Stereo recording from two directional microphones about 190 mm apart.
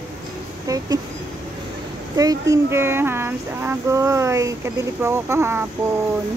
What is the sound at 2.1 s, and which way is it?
Speech, 20° right (ahead or behind).